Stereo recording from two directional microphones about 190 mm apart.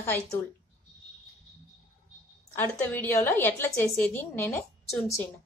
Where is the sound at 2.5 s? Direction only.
10° left (ahead or behind).